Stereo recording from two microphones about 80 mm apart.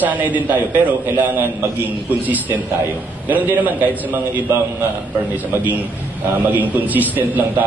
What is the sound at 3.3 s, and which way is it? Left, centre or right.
Speech, right.